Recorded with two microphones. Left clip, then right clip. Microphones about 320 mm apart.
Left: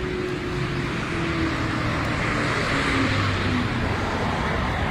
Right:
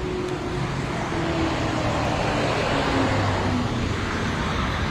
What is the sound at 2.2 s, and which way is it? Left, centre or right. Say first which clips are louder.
Vehicle: right 1 dB; right.